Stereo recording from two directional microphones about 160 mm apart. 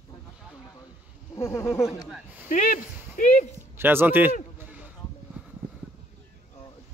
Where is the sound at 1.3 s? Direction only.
15° left (ahead or behind).